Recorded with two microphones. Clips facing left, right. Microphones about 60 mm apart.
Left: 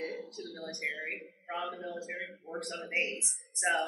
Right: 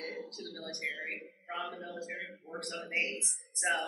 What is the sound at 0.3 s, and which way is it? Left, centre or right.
A woman's voice, centre.